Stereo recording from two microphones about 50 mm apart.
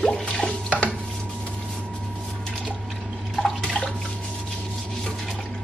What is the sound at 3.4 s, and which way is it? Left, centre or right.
Drip, centre.